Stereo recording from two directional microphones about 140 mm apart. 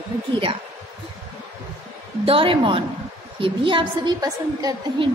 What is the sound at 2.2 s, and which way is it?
A woman's voice, 40° right (ahead or behind).